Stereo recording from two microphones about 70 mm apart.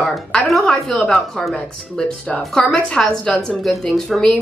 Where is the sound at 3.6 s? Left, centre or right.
Centre.